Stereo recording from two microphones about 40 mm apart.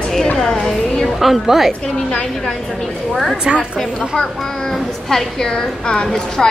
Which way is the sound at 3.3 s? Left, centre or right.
Right.